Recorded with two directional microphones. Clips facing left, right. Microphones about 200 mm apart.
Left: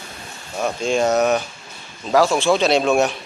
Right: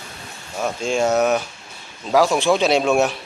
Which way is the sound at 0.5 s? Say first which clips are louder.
Left 1 dB; centre (ahead or behind).